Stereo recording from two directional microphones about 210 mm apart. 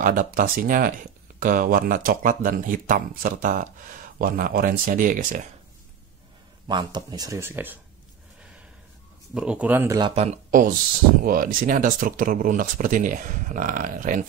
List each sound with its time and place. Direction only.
0.0 s speech: 40° right (ahead or behind)
6.7 s speech: 20° right (ahead or behind)
9.3 s speech: 5° right (ahead or behind); by 14.2 s 40° right (ahead or behind)